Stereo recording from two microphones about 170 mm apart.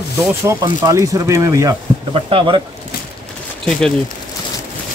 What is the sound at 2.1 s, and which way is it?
Speech, 30° right (ahead or behind).